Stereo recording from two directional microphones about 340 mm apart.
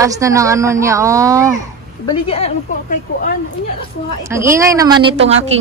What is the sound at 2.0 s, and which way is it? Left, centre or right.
A woman's voice, centre.